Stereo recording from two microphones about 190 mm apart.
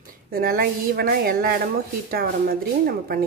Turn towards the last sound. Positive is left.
turn(degrees=-50)  # may be behind; listen again after turning